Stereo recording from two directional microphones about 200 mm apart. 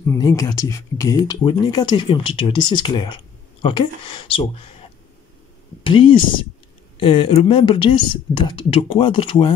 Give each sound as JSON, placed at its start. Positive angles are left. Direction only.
{"t": 0.0, "sound": "speech", "side_deg": 15}
{"t": 5.9, "sound": "speech", "side_deg": 25}